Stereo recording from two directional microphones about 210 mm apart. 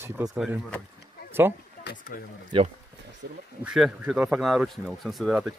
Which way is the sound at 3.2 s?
50° right (ahead or behind).